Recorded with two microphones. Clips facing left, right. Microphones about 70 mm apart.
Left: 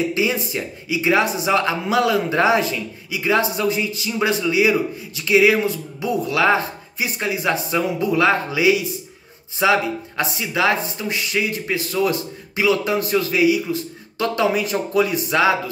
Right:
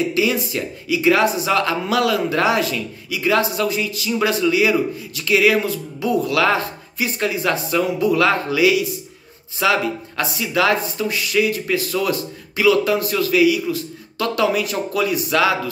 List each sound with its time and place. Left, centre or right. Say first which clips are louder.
0.1 s speech: right 2 dB; left